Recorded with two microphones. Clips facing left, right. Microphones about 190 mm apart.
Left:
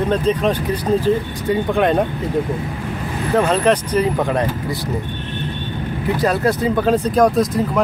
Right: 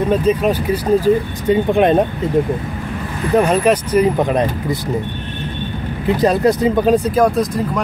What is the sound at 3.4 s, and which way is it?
Speech, 10° right (ahead or behind).